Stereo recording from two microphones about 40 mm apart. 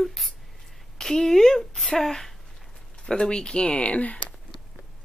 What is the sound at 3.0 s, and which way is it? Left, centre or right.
Speech, left.